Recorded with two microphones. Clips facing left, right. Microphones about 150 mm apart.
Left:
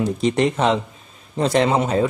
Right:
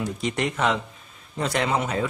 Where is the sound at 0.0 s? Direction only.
30° left (ahead or behind).